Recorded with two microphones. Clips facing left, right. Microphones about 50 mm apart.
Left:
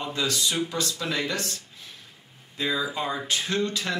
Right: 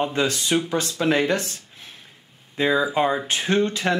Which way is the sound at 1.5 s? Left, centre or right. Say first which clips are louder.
Even; right.